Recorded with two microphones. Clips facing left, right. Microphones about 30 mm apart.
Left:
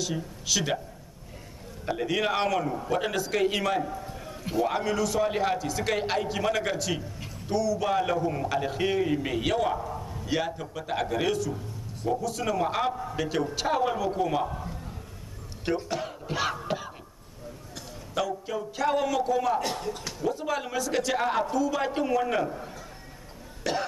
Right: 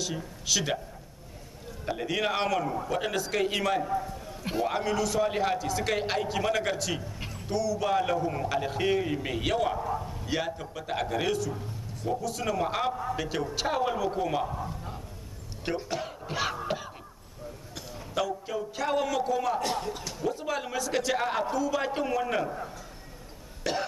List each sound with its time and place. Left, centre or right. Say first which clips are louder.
0.0 s a man's voice: left 2 dB; centre
1.9 s a man's voice: left 2 dB; centre
4.0 s a sound: right 1 dB; centre
4.6 s a man's voice: left 2 dB; centre